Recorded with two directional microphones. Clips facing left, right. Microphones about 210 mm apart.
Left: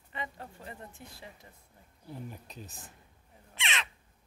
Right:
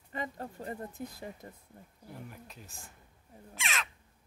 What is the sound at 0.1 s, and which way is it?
Speech, 40° right (ahead or behind).